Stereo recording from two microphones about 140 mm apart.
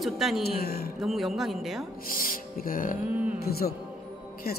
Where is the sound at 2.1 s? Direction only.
90° left.